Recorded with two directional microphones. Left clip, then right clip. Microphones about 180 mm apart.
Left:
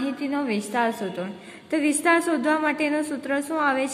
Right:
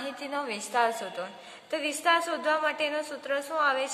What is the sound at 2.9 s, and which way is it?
A woman's voice, 20° left (ahead or behind).